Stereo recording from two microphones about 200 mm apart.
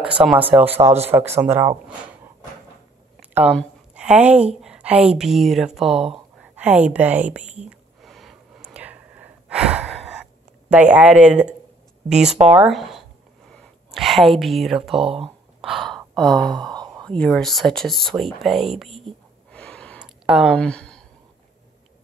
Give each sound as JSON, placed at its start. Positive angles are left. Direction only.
{"t": 0.0, "sound": "speech", "side_deg": -5}
{"t": 3.9, "sound": "a woman's voice", "side_deg": -5}
{"t": 8.0, "sound": "a sound", "side_deg": 0}
{"t": 10.7, "sound": "a woman's voice", "side_deg": -5}
{"t": 13.5, "sound": "a sound", "side_deg": 0}
{"t": 15.0, "sound": "speech", "side_deg": -25}
{"t": 15.6, "sound": "sigh", "side_deg": 0}
{"t": 16.3, "sound": "speech", "side_deg": -20}
{"t": 17.0, "sound": "speech", "side_deg": 5}